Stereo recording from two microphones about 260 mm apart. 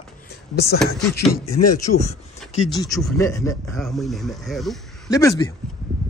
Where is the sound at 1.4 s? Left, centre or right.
Left.